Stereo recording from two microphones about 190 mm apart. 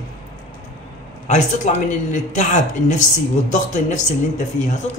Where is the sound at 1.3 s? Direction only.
40° left (ahead or behind).